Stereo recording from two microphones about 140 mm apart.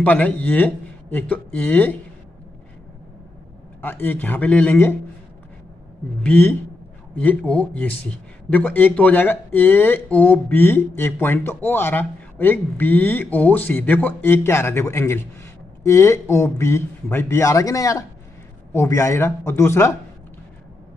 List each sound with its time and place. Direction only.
0.0 s speech: 10° left (ahead or behind)
3.8 s speech: 15° left (ahead or behind)
6.2 s speech: 15° left (ahead or behind)